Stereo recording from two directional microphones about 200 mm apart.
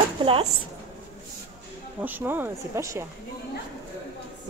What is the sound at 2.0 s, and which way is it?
Speech, 10° right (ahead or behind).